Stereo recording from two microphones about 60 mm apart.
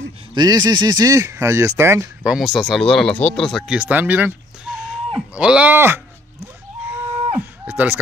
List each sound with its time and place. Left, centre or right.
0.5 s speech: right
2.2 s speech: centre
2.8 s speech: centre
3.6 s speech: right
4.6 s a sound: centre
5.7 s speech: right
6.4 s a sound: right